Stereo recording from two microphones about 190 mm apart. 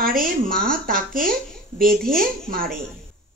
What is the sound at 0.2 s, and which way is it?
A woman's voice, 50° right (ahead or behind).